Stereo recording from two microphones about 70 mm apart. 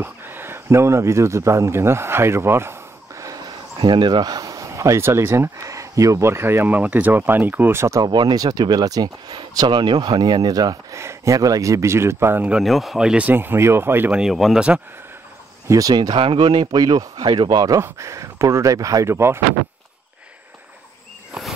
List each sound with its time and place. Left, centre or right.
0.0 s speech: right
3.3 s a sound: right
4.4 s speech: right
8.0 s speech: right
11.0 s speech: right
12.6 s speech: centre
13.3 s speech: right
14.1 s speech: centre
15.6 s speech: right
15.9 s speech: right
17.8 s speech: right
19.0 s speech: right